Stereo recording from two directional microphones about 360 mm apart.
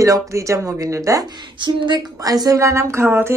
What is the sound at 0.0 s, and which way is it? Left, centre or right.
A woman's voice, centre.